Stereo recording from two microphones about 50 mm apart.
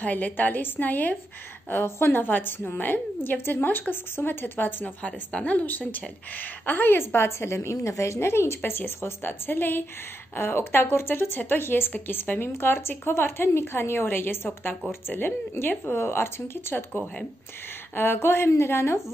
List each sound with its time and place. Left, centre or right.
0.0 s a woman's voice: left
1.9 s a woman's voice: left
4.8 s a woman's voice: left
8.6 s a woman's voice: left